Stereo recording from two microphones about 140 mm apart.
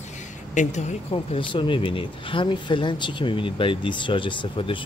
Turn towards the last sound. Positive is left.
turn(degrees=40)  # may be behind; listen again after turning